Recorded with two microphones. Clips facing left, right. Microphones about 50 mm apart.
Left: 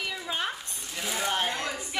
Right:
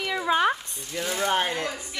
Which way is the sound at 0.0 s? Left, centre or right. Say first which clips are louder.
Right 9 dB; right.